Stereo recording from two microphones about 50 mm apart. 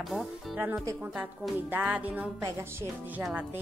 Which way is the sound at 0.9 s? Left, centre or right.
Right.